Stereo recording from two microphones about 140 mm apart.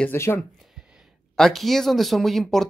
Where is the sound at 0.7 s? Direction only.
5° right (ahead or behind).